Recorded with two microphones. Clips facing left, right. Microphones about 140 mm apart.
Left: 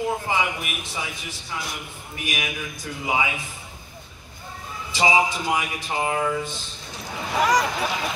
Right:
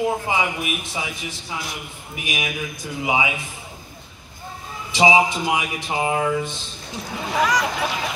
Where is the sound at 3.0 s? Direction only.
15° right (ahead or behind).